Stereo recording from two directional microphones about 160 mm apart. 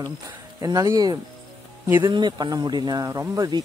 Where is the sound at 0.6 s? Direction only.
20° right (ahead or behind).